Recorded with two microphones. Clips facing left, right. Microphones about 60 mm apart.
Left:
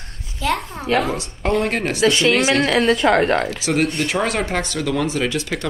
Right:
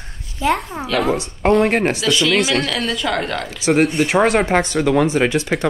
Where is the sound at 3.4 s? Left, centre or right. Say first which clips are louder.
Right 4 dB; centre.